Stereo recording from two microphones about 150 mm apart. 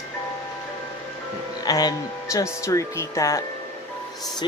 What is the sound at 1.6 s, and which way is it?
Speech, 25° left (ahead or behind).